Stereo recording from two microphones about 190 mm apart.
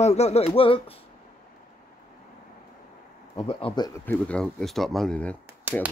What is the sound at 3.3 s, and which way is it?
Speech, 30° left (ahead or behind).